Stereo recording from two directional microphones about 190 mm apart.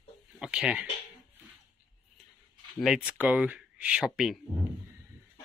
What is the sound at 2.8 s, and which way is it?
Speech, 5° right (ahead or behind).